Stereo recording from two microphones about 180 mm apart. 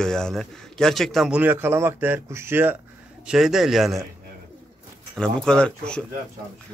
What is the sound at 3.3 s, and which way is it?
Speech, centre (ahead or behind).